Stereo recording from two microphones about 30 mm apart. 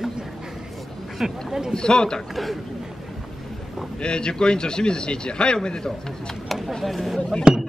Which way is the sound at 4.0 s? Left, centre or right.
Left.